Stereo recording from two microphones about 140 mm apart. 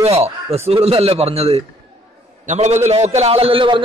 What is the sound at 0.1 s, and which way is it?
A man's voice, 45° right (ahead or behind).